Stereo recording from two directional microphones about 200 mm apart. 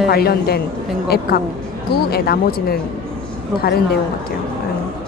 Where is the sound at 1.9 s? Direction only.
50° left (ahead or behind).